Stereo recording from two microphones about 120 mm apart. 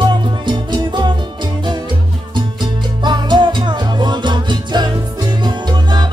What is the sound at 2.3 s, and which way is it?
Music, 40° right (ahead or behind).